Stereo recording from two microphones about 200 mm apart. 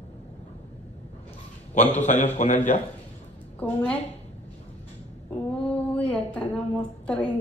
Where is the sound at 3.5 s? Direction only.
10° left (ahead or behind).